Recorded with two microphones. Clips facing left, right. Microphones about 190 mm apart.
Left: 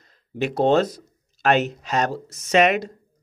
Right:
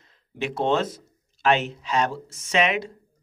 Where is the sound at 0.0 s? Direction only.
40° left (ahead or behind).